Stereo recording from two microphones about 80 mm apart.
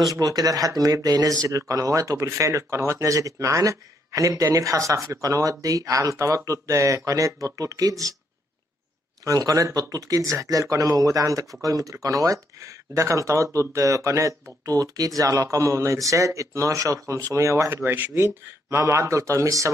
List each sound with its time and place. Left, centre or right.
0.1 s speech: right
9.2 s speech: right
18.2 s speech: right